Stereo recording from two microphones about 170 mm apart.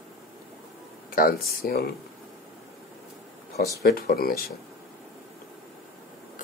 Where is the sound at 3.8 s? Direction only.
60° left (ahead or behind).